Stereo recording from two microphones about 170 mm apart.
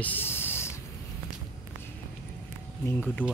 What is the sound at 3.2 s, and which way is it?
Speech, 10° left (ahead or behind).